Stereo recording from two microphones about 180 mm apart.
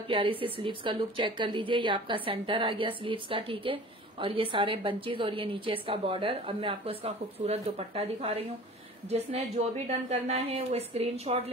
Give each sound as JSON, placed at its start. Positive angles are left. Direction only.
{"t": 0.1, "sound": "a woman's voice", "side_deg": -30}